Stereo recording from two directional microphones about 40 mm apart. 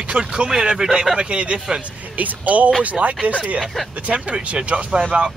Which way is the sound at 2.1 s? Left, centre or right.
Right.